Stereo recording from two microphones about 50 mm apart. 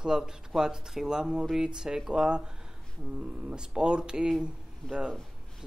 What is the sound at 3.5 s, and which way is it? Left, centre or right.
Speech, centre.